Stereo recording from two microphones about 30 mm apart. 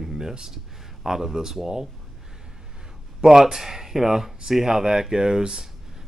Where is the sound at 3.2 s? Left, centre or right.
Centre.